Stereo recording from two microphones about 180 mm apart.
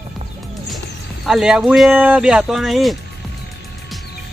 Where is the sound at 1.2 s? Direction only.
Centre (ahead or behind).